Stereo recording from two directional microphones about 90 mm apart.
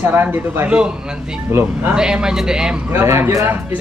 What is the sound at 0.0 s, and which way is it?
Speech, 25° right (ahead or behind).